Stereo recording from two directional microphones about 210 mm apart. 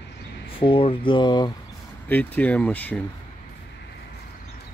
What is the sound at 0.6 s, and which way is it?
Speech, 25° left (ahead or behind).